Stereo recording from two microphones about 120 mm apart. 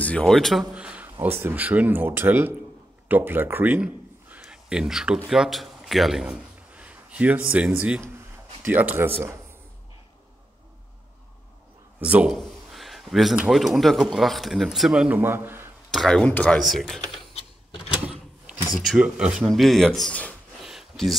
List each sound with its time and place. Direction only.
0.0 s speech: 5° left (ahead or behind)
0.7 s a sound: 10° right (ahead or behind)
1.2 s a man's voice: 15° right (ahead or behind)
12.0 s speech: 10° right (ahead or behind)
12.4 s a sound: centre (ahead or behind)
13.5 s speech: centre (ahead or behind)
15.1 s a man's voice: 15° right (ahead or behind)
15.9 s speech: 5° left (ahead or behind)
18.8 s speech: 5° right (ahead or behind)
20.6 s a sound: centre (ahead or behind)